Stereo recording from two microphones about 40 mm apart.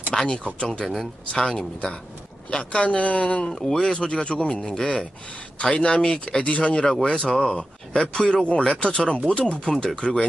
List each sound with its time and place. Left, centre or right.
0.1 s a sound: centre
0.6 s speech: left
3.5 s speech: centre